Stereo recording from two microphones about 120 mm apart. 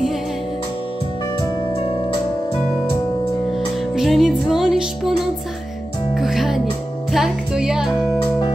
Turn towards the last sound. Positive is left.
turn(degrees=-5)  # may be behind; listen again after turning